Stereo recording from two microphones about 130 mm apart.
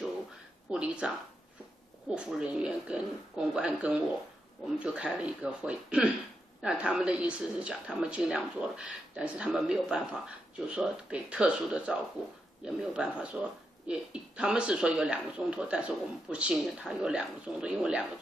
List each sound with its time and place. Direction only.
0.7 s speech: 10° right (ahead or behind)